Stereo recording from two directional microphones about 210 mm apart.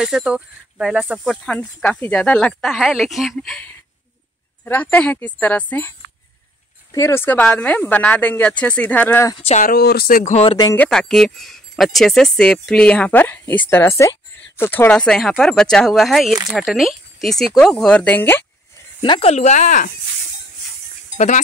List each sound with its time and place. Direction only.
0.0 s speech: 5° right (ahead or behind)
4.6 s speech: 10° left (ahead or behind)
9.4 s speech: 35° left (ahead or behind)
10.6 s speech: 15° left (ahead or behind)
10.9 s speech: 5° left (ahead or behind)
19.0 s speech: 25° left (ahead or behind)